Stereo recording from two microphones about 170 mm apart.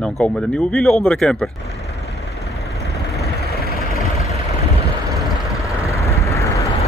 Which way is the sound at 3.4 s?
65° left (ahead or behind).